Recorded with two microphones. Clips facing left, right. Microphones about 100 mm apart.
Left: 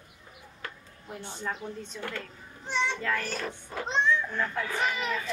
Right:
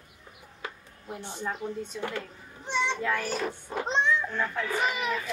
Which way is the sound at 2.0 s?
15° right (ahead or behind).